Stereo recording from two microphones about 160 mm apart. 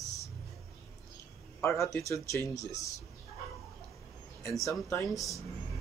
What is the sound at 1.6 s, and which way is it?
Speech, 15° left (ahead or behind).